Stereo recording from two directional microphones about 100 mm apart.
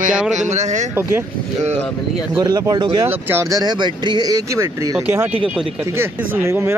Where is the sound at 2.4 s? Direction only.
40° right (ahead or behind).